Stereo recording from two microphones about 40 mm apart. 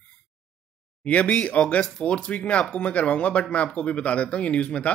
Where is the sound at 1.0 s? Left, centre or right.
Left.